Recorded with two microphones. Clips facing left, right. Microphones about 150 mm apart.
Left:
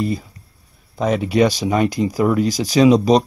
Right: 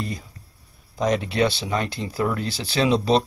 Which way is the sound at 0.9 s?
5° left (ahead or behind).